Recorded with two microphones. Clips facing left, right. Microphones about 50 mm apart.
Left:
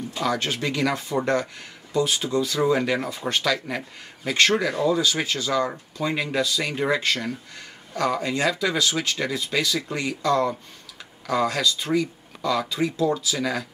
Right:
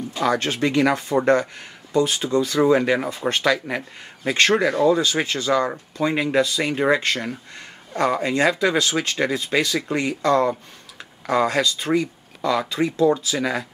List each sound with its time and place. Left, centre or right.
0.1 s speech: right
3.1 s speech: right
3.6 s speech: right
7.0 s speech: right